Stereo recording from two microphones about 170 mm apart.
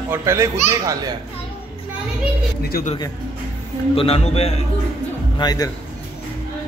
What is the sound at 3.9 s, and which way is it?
Speech, 35° left (ahead or behind).